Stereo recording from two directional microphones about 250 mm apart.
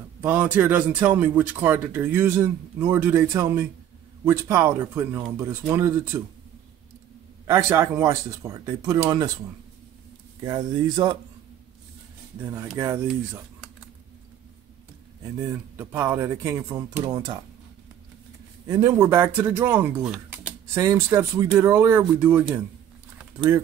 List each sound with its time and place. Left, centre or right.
0.2 s a man's voice: centre
7.4 s a man's voice: centre
10.4 s a man's voice: centre
12.7 s speech: centre
15.3 s a man's voice: centre
18.7 s a man's voice: centre